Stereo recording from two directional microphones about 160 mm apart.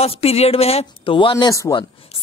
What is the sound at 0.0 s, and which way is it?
Speech, 40° left (ahead or behind).